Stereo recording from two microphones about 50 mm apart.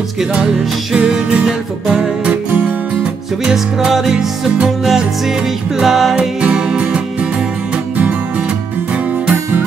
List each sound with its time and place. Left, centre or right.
0.9 s music: centre
3.5 s music: centre
5.8 s music: centre
6.1 s music: right